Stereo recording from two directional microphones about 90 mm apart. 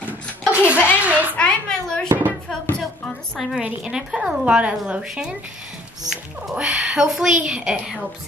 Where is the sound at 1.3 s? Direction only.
10° left (ahead or behind).